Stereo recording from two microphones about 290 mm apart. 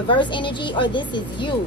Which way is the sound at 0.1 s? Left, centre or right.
Centre.